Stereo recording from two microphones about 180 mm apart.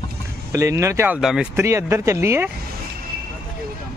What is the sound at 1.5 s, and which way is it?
Speech, 15° right (ahead or behind).